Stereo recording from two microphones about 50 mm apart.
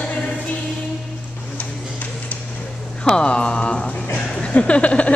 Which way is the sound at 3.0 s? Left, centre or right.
Centre.